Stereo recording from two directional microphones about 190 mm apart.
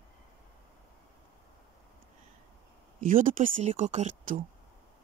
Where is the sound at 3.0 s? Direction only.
45° right (ahead or behind).